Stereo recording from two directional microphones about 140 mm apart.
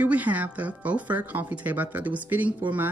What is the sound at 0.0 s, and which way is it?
Speech, 10° right (ahead or behind).